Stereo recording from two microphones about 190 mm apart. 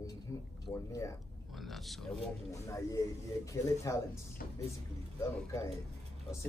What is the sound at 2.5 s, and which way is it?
Speech, 15° left (ahead or behind).